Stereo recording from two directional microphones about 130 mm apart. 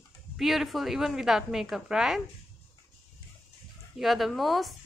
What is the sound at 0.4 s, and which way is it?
A woman's voice, centre (ahead or behind).